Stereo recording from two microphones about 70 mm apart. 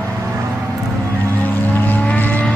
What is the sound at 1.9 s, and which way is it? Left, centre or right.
Vehicle, left.